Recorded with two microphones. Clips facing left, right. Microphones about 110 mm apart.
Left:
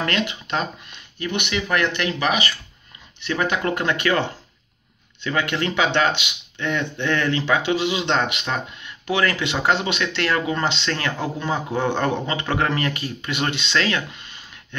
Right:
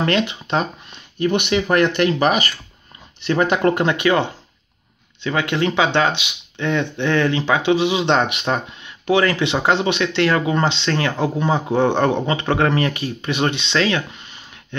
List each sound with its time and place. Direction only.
0.0 s speech: 30° right (ahead or behind)
3.8 s speech: 20° right (ahead or behind)